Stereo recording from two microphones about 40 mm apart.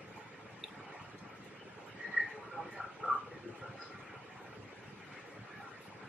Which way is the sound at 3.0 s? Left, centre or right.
Right.